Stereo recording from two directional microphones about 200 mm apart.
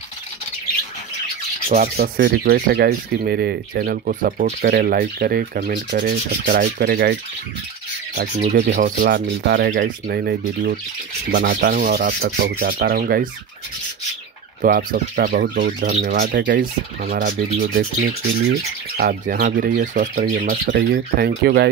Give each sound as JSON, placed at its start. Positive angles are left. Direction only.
{"t": 2.0, "sound": "speech", "side_deg": -50}
{"t": 4.6, "sound": "speech", "side_deg": -50}
{"t": 8.2, "sound": "speech", "side_deg": -55}
{"t": 14.6, "sound": "speech", "side_deg": -45}
{"t": 20.7, "sound": "speech", "side_deg": -60}